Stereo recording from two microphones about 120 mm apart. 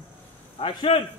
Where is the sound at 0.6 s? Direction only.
45° left (ahead or behind).